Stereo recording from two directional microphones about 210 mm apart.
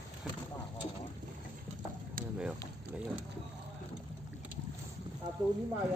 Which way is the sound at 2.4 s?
5° right (ahead or behind).